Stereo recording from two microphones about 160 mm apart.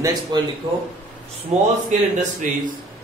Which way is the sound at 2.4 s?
55° right (ahead or behind).